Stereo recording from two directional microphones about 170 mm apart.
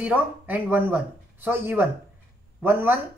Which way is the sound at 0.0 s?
10° right (ahead or behind).